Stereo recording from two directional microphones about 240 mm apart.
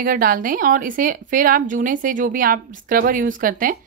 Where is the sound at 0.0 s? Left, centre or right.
Right.